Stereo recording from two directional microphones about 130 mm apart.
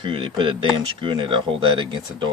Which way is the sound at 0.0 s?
40° right (ahead or behind).